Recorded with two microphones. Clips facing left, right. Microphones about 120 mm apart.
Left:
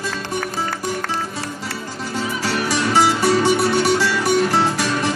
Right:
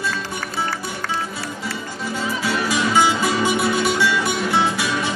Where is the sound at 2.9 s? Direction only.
35° left (ahead or behind).